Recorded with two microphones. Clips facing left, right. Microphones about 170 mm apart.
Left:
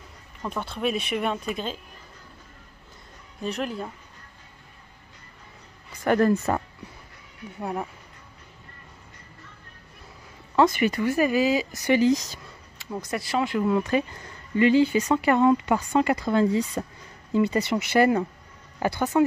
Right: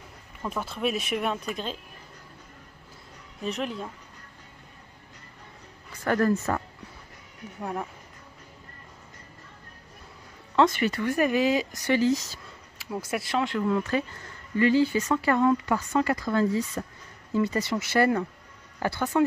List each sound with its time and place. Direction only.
0.4 s speech: 5° right (ahead or behind)
3.4 s speech: centre (ahead or behind)
6.0 s speech: 25° left (ahead or behind)
7.6 s speech: 5° left (ahead or behind)
10.5 s speech: 10° left (ahead or behind)
12.7 s speech: 5° right (ahead or behind); by 19.2 s 15° left (ahead or behind)